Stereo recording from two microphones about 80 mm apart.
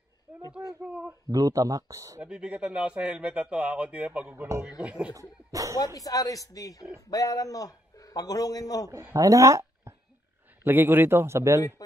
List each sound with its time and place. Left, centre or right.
0.8 s speech: centre
1.3 s speech: right
2.2 s speech: centre
5.5 s speech: right
5.9 s a man's voice: left
9.1 s speech: right
10.6 s speech: right